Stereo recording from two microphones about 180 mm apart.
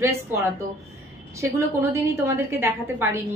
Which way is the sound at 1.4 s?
15° right (ahead or behind).